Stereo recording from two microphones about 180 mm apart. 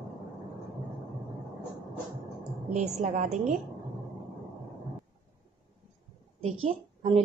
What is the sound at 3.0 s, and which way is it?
Speech, 40° right (ahead or behind).